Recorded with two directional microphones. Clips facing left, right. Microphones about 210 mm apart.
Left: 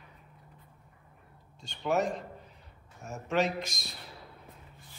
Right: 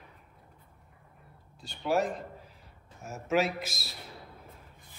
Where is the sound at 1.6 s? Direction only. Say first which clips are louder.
Right 1 dB; centre (ahead or behind).